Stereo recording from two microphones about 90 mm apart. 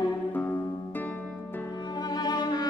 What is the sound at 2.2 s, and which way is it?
Music, 50° left (ahead or behind).